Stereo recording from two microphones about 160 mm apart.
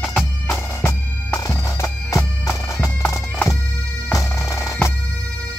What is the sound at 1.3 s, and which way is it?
Bagpipes, 20° left (ahead or behind).